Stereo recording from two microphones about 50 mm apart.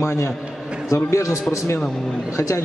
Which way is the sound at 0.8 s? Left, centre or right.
Left.